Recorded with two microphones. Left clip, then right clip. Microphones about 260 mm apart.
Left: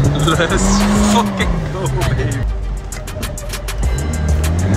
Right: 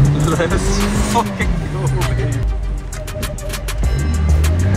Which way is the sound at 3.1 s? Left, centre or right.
Centre.